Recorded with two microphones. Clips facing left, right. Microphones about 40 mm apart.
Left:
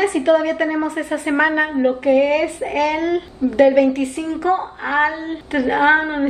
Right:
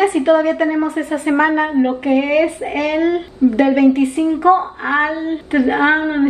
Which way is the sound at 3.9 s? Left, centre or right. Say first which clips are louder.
Right 6 dB; right.